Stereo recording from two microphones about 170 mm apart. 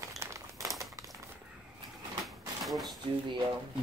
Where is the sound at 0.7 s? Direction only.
20° right (ahead or behind).